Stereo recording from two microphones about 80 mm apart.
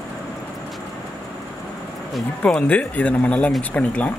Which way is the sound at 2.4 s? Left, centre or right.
Centre.